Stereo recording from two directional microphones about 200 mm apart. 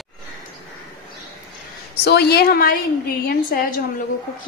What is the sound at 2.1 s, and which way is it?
Speech, 55° left (ahead or behind).